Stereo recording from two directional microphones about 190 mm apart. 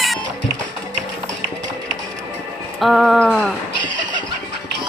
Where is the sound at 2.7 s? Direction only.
Centre (ahead or behind).